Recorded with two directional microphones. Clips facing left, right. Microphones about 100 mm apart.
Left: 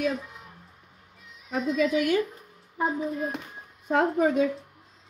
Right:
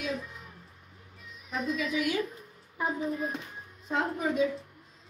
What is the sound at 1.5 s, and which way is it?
Speech, 50° left (ahead or behind).